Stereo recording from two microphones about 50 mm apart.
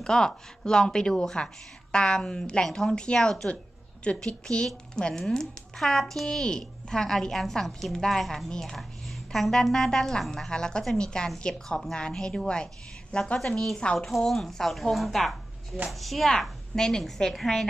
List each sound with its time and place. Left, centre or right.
0.0 s a woman's voice: centre
13.9 s a woman's voice: centre
16.3 s speech: centre